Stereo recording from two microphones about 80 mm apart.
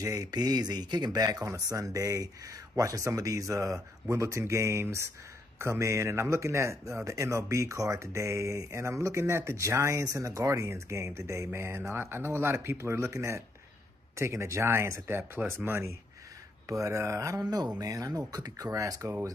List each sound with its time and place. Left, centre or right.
0.0 s speech: right
1.2 s speech: right